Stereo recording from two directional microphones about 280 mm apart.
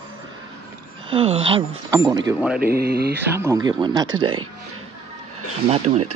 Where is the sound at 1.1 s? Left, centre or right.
Centre.